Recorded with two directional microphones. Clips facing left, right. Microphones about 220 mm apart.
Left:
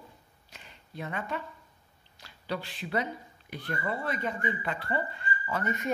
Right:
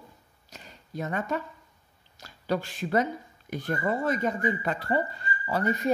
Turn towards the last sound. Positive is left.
turn(degrees=-35)  # may be behind; listen again after turning